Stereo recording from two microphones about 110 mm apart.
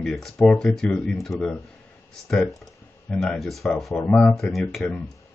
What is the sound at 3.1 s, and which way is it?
Speech, 10° left (ahead or behind).